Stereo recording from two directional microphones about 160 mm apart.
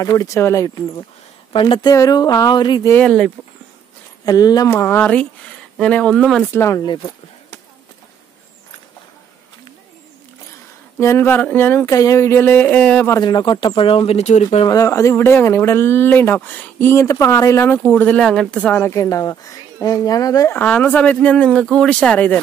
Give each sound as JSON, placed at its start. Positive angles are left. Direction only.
{"t": 0.0, "sound": "speech", "side_deg": 20}
{"t": 2.9, "sound": "speech", "side_deg": 5}
{"t": 4.3, "sound": "speech", "side_deg": 25}
{"t": 6.5, "sound": "speech", "side_deg": 20}
{"t": 11.0, "sound": "speech", "side_deg": 15}
{"t": 13.1, "sound": "speech", "side_deg": 25}
{"t": 14.7, "sound": "speech", "side_deg": 20}
{"t": 20.5, "sound": "speech", "side_deg": 10}